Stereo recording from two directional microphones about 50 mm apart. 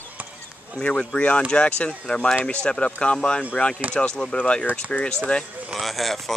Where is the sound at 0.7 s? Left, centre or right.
Left.